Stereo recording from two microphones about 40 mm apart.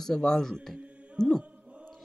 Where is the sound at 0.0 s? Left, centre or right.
Centre.